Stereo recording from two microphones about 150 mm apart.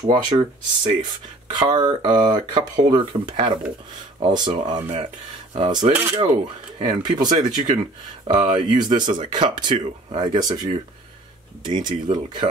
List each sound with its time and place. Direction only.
0.0 s speech: 30° right (ahead or behind)